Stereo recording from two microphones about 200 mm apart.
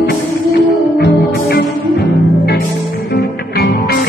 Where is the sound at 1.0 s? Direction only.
50° left (ahead or behind).